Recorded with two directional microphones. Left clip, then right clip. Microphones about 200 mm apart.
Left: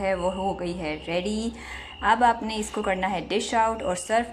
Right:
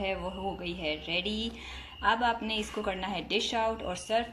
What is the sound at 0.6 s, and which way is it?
Speech, 30° left (ahead or behind).